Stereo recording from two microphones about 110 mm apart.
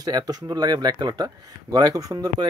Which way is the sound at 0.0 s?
35° right (ahead or behind).